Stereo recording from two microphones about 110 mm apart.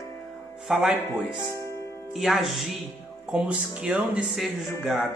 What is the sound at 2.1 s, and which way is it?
Speech, centre (ahead or behind).